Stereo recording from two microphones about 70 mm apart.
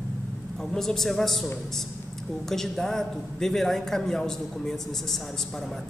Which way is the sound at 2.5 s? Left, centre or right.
Centre.